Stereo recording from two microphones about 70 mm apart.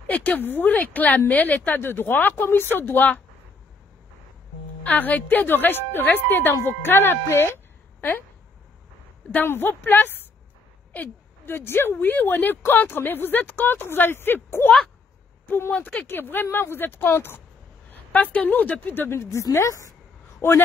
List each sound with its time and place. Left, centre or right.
0.0 s speech: left
4.8 s speech: left
9.3 s speech: left
10.9 s a sound: left
11.5 s speech: left
18.1 s speech: left
19.0 s a woman's voice: left
20.3 s speech: left